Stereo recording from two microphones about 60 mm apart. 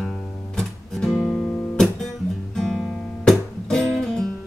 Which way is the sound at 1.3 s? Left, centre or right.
Centre.